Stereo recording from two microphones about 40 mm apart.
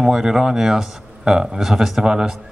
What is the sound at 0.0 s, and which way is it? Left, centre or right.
Speech, centre.